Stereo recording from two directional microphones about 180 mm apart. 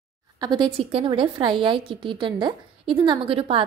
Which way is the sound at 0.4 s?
25° right (ahead or behind).